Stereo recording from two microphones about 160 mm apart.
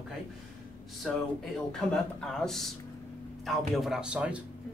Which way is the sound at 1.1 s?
Centre (ahead or behind).